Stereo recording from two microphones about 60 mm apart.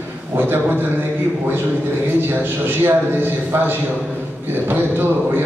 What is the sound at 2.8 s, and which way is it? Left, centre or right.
A man's voice, right.